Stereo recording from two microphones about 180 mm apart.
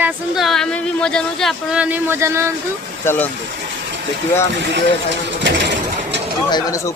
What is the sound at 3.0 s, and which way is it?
Speech, 10° left (ahead or behind).